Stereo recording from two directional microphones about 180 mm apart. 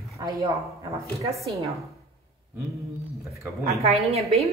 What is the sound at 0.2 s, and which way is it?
Speech, 15° right (ahead or behind).